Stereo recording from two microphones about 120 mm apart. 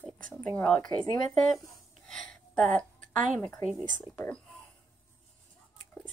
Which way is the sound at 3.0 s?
90° right.